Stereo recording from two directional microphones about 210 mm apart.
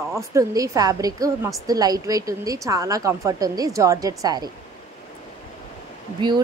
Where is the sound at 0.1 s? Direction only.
15° right (ahead or behind).